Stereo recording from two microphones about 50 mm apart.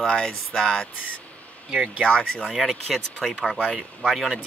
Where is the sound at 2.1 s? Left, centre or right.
Left.